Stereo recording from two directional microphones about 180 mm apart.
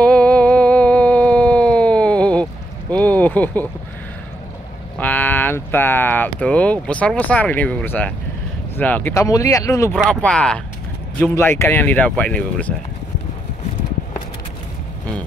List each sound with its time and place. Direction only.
0.0 s a sound: 5° left (ahead or behind)
4.9 s speech: 10° left (ahead or behind)
9.9 s speech: centre (ahead or behind)